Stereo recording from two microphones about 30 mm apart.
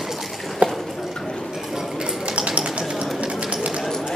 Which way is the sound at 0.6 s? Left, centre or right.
Right.